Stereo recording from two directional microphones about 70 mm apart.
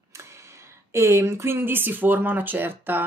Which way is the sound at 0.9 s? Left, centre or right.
Right.